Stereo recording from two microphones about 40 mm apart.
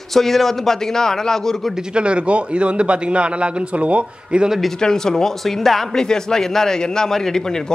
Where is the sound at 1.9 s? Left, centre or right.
Right.